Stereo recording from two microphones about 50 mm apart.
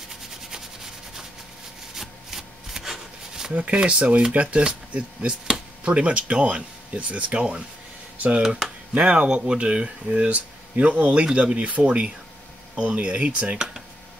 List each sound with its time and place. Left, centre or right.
2.0 s shuffling cards: centre
3.5 s speech: right
8.4 s speech: centre
8.9 s speech: right
11.5 s speech: right